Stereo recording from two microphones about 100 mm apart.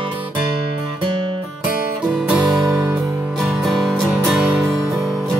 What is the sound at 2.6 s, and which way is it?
Music, 25° right (ahead or behind).